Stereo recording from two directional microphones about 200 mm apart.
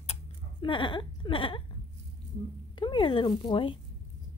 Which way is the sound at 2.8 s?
25° left (ahead or behind).